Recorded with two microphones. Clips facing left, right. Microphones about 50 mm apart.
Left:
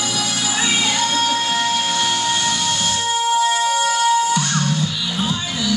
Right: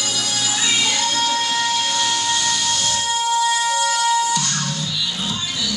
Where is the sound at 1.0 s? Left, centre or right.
Centre.